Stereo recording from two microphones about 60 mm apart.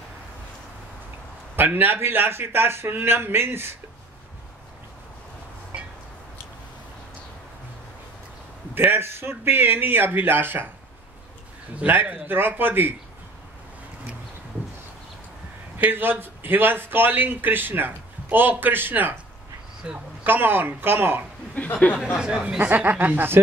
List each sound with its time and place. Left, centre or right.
1.6 s a man's voice: right
8.7 s a man's voice: right
11.8 s a man's voice: right
15.8 s a man's voice: right
19.8 s speech: centre
20.2 s a man's voice: right
21.5 s speech: left
22.1 s speech: centre
22.6 s a man's voice: right